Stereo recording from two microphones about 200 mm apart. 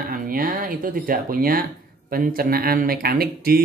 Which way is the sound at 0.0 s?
45° right (ahead or behind).